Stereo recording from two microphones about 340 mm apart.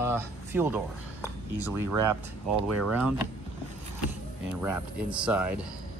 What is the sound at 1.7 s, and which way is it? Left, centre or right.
Speech, right.